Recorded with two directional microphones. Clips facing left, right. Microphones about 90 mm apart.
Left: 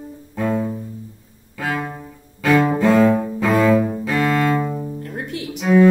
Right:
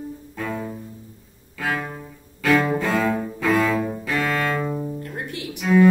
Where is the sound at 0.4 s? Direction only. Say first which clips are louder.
Left 8 dB; 20° left (ahead or behind).